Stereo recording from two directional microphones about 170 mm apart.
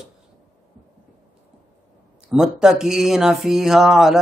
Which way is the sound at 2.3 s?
5° right (ahead or behind).